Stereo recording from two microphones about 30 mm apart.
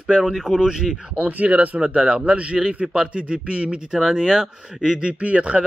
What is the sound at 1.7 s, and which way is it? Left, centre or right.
Speech, right.